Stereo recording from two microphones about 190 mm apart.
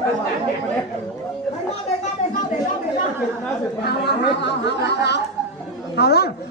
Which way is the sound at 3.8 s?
60° left (ahead or behind).